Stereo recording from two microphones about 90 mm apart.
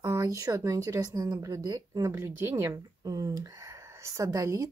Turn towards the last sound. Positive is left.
turn(degrees=-40)  # may be behind; listen again after turning